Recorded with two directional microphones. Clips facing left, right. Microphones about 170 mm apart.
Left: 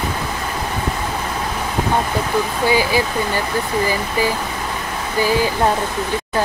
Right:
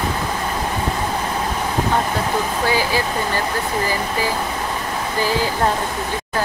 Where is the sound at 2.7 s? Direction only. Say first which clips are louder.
Left 3 dB; 15° left (ahead or behind).